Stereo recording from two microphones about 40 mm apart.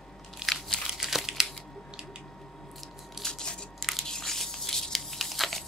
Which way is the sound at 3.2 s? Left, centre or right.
Centre.